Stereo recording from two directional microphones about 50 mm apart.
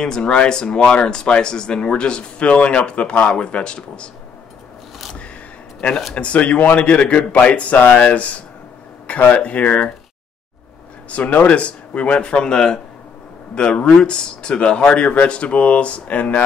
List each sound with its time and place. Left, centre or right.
0.0 s speech: centre
5.8 s a man's voice: centre
11.1 s speech: left